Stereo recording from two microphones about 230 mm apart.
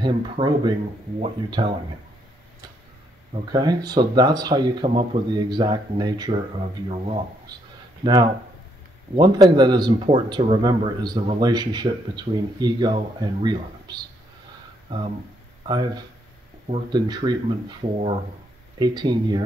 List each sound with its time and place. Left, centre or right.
0.0 s speech: right
3.5 s speech: centre
15.6 s speech: centre